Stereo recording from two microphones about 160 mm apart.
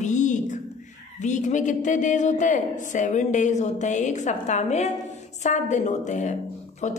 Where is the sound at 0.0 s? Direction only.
50° left (ahead or behind).